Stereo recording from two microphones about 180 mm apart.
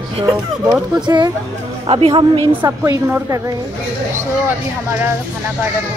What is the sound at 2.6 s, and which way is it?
Speech, 15° right (ahead or behind).